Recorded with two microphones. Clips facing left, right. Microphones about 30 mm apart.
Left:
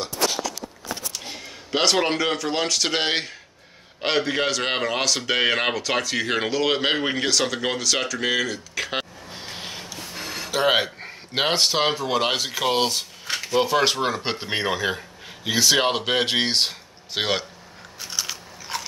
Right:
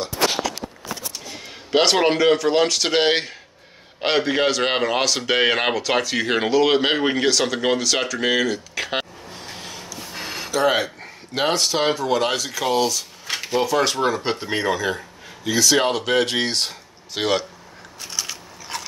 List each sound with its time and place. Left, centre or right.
1.4 s speech: centre
9.3 s a sound: left
10.1 s a sound: centre
10.5 s speech: left
13.6 s speech: centre
18.0 s biting: centre